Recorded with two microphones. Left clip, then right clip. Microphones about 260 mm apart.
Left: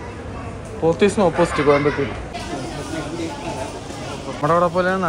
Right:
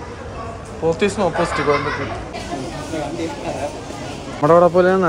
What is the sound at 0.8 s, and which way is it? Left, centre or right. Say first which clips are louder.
Speech: left 2 dB; centre.